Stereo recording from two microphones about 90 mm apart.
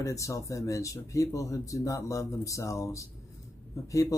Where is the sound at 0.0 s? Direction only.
35° left (ahead or behind).